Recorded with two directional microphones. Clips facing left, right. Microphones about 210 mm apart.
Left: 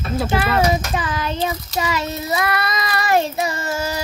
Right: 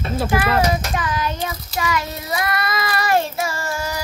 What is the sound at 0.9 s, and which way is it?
Speech, 25° left (ahead or behind).